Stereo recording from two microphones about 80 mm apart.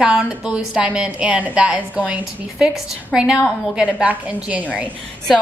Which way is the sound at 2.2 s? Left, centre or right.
Centre.